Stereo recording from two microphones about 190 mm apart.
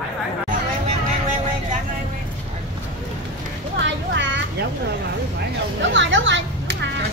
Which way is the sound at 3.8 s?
75° right (ahead or behind).